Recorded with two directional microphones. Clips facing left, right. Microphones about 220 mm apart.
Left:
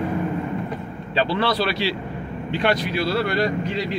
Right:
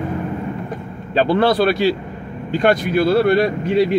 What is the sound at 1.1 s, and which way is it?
Speech, 50° right (ahead or behind).